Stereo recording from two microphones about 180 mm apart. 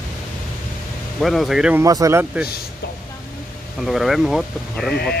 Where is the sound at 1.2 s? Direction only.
Centre (ahead or behind).